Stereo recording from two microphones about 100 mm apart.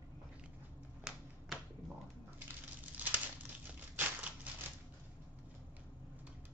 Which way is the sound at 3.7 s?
15° right (ahead or behind).